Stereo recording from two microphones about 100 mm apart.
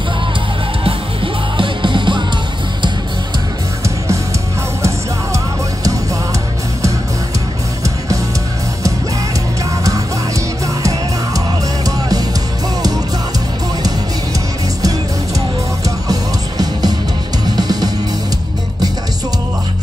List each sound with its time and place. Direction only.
0.8 s music: 60° right (ahead or behind)
9.8 s music: 35° right (ahead or behind)
14.8 s music: 35° right (ahead or behind)